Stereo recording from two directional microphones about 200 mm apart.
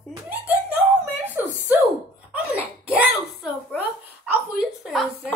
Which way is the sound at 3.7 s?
5° right (ahead or behind).